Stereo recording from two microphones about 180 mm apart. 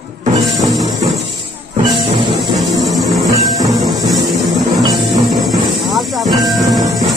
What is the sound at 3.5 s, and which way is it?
Music, 20° right (ahead or behind).